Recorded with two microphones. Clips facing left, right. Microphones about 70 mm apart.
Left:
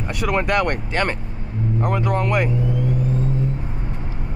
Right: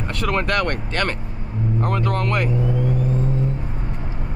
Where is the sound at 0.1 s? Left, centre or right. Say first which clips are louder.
Left 1 dB; centre.